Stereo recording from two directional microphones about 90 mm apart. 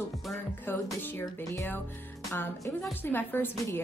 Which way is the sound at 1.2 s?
35° left (ahead or behind).